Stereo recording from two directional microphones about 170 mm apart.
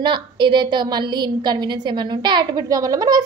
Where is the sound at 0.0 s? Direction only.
25° right (ahead or behind).